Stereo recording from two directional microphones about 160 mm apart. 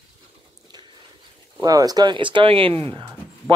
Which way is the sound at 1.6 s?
25° right (ahead or behind).